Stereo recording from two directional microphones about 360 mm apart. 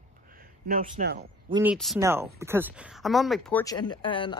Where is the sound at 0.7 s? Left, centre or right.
Right.